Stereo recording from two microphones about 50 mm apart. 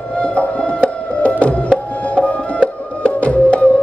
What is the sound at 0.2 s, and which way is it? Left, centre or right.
Music, left.